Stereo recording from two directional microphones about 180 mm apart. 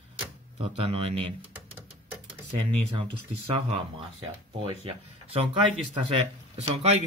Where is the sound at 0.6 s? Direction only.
30° right (ahead or behind).